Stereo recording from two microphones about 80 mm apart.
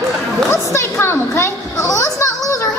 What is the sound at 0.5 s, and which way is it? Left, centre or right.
A child's voice, left.